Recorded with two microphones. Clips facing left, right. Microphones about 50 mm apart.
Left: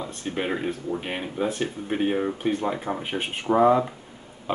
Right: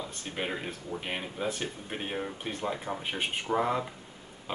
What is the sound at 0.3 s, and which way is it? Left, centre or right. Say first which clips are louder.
Speech: left 8 dB; centre.